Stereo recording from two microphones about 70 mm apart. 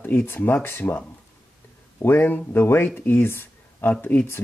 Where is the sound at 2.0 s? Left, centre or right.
Left.